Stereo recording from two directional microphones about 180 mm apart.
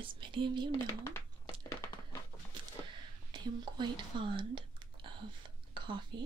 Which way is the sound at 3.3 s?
25° right (ahead or behind).